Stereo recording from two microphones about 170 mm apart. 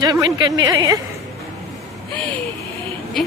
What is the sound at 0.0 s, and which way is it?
A woman's voice, 20° right (ahead or behind).